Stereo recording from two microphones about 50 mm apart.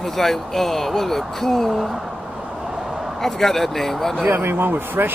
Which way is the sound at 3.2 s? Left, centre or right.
Centre.